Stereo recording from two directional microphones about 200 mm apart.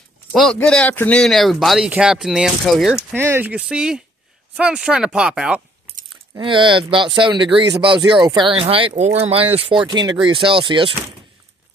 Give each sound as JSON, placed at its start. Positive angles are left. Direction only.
{"t": 0.3, "sound": "speech", "side_deg": 0}
{"t": 6.3, "sound": "speech", "side_deg": -25}